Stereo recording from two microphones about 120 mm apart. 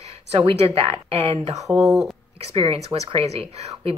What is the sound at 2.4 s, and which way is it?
Speech, 55° right (ahead or behind).